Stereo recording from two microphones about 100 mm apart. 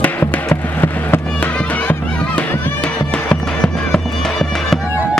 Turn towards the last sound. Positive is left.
turn(degrees=5)  # may be behind; listen again after turning